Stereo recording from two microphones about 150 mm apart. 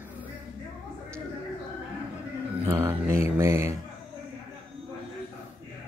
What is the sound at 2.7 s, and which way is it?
Mantra, 20° right (ahead or behind).